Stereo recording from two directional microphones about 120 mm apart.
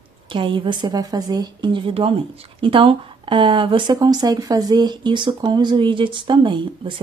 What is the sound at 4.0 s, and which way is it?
Speech, 30° right (ahead or behind).